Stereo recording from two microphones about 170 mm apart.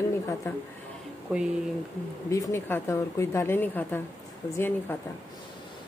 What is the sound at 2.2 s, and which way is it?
Speech, 20° left (ahead or behind).